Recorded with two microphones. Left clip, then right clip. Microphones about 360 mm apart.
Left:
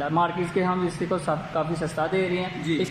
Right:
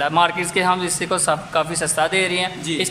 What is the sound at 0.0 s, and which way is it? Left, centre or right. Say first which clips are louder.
A man's voice: right 7 dB; right.